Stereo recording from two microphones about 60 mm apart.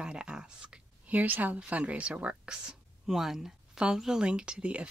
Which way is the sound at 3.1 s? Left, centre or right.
Centre.